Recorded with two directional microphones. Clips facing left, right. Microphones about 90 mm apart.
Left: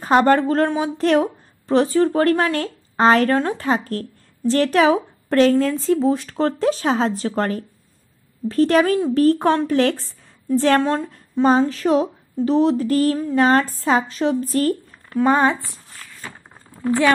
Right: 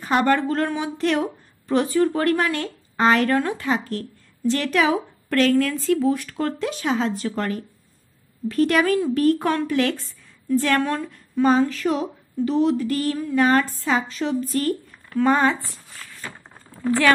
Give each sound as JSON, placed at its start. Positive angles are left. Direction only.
{"t": 0.0, "sound": "a woman's voice", "side_deg": 35}
{"t": 15.0, "sound": "speech", "side_deg": 20}
{"t": 15.9, "sound": "a sound", "side_deg": 0}
{"t": 16.7, "sound": "a woman's voice", "side_deg": 15}